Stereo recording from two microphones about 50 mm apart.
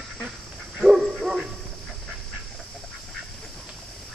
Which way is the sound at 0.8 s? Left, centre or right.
Centre.